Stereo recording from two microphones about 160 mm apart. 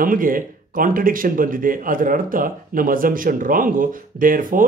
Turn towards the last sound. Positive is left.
turn(degrees=-60)  # may be behind; listen again after turning